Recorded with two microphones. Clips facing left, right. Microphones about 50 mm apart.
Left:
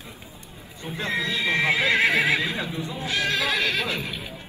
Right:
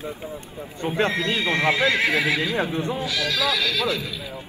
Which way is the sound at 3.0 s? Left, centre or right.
Left.